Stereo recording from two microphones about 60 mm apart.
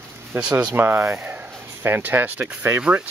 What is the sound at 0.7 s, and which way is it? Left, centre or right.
Speech, right.